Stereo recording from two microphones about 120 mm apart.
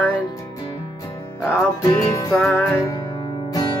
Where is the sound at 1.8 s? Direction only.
25° left (ahead or behind).